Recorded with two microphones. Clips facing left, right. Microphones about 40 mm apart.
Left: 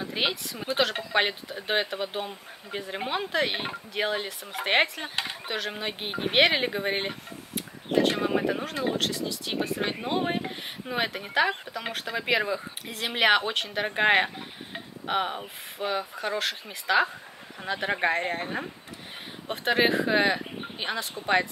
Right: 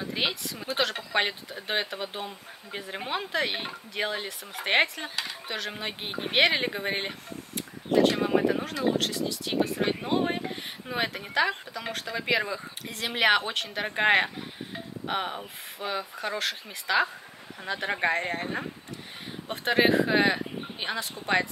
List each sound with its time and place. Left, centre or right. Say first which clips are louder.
0.0 s a woman's voice: left 1 dB; centre
5.1 s speech: left 2 dB; left
5.5 s speech: left 2 dB; centre